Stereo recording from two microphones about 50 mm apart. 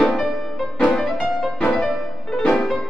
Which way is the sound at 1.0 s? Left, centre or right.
Centre.